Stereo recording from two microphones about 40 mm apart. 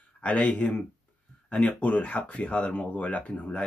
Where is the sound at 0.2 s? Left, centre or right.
Left.